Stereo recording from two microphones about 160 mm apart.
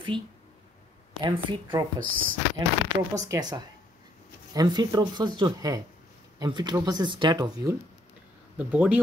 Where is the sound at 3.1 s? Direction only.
20° right (ahead or behind).